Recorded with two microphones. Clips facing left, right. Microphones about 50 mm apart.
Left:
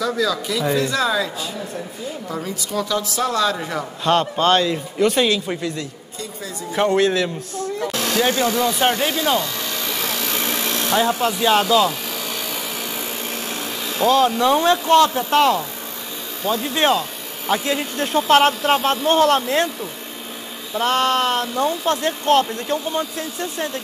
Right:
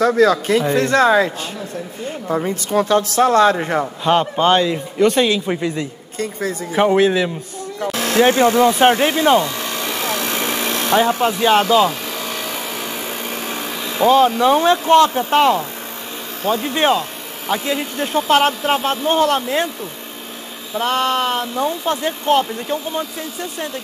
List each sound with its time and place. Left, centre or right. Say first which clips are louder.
0.0 s speech: right 7 dB; right
4.0 s a man's voice: right 1 dB; centre
5.0 s speech: right 3 dB; centre
5.3 s a man's voice: right 3 dB; centre
6.1 s speech: right 10 dB; right
6.7 s a man's voice: right 3 dB; centre
8.0 s a sound: right 7 dB; right; by 15.6 s centre
16.4 s a man's voice: right 2 dB; centre